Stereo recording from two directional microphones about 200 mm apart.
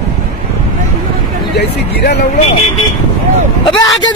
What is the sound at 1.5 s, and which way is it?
Speech, 55° left (ahead or behind).